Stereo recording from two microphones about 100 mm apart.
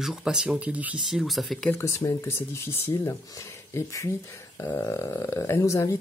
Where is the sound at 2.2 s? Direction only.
25° left (ahead or behind).